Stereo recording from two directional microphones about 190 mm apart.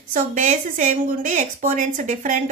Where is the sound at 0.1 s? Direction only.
40° right (ahead or behind).